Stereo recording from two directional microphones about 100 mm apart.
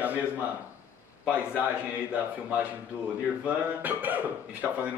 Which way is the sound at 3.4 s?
15° right (ahead or behind).